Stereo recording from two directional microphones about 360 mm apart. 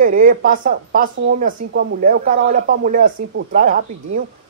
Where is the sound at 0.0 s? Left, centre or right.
Right.